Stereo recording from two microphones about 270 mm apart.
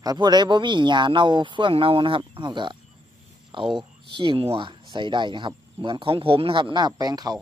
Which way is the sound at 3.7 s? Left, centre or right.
Centre.